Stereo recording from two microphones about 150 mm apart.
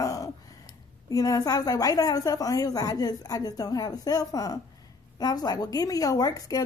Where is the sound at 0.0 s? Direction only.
20° left (ahead or behind).